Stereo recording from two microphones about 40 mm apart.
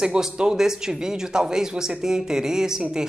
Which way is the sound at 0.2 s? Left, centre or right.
Centre.